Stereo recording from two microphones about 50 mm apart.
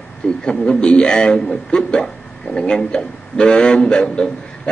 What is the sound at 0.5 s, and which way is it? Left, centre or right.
A man's voice, centre.